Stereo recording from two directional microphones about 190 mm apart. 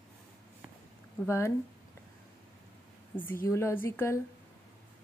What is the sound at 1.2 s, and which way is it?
Speech, 15° left (ahead or behind).